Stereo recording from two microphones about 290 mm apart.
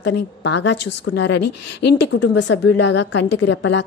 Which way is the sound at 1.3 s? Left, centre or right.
Left.